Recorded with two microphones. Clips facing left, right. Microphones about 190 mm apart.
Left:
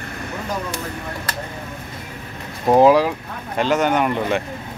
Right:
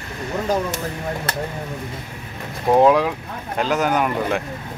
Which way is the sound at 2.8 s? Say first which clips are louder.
Left 2 dB; centre (ahead or behind).